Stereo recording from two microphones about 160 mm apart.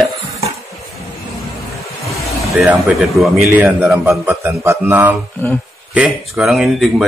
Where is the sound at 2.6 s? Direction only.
5° right (ahead or behind).